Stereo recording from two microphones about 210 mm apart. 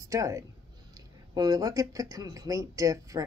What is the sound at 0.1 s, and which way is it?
Speech, 15° right (ahead or behind).